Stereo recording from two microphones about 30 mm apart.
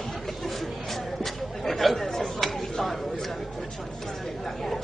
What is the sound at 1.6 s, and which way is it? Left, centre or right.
Chatter, centre.